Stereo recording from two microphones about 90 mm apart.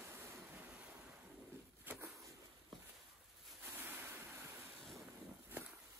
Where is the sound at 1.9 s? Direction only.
20° right (ahead or behind).